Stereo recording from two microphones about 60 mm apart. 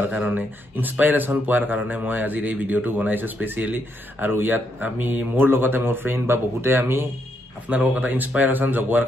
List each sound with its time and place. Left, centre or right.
0.1 s speech: right
7.6 s speech: right